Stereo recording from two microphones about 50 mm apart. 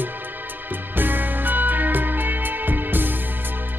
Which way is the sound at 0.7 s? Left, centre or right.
Right.